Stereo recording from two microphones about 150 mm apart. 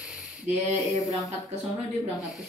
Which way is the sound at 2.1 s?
Centre (ahead or behind).